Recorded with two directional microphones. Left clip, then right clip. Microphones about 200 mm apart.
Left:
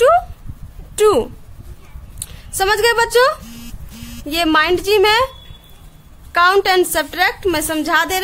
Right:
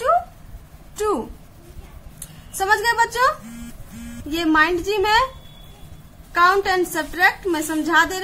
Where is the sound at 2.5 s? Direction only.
45° left (ahead or behind).